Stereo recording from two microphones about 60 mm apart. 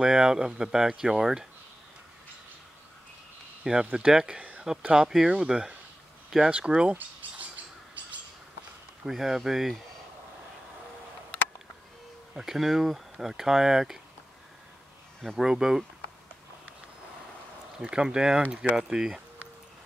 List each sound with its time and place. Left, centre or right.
0.0 s speech: centre
3.9 s speech: centre
9.0 s speech: centre
12.4 s speech: centre
15.2 s speech: centre
17.8 s speech: centre